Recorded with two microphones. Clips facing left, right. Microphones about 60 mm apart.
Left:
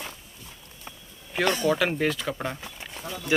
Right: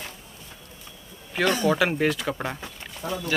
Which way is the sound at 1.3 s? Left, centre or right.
Centre.